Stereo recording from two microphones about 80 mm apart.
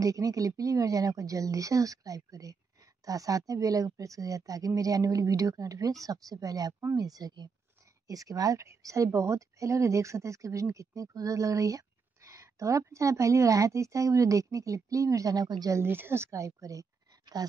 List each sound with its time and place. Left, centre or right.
0.0 s speech: right
15.7 s speech: right
17.4 s speech: right